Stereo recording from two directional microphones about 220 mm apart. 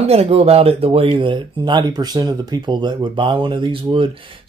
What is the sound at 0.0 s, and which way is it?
Speech, 30° right (ahead or behind).